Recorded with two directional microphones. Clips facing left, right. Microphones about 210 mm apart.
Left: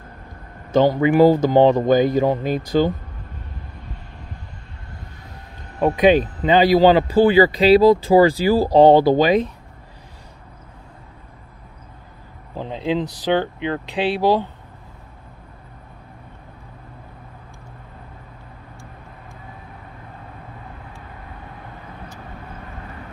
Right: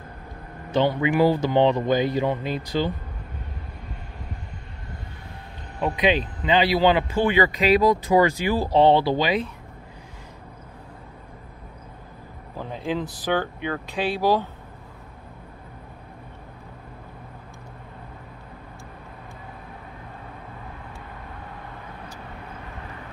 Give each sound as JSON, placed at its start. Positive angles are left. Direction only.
{"t": 0.7, "sound": "speech", "side_deg": 45}
{"t": 5.8, "sound": "speech", "side_deg": 45}
{"t": 12.5, "sound": "a sound", "side_deg": 20}
{"t": 13.2, "sound": "speech", "side_deg": 20}